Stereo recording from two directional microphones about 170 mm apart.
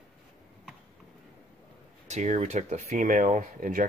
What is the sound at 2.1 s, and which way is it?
Speech, 45° right (ahead or behind).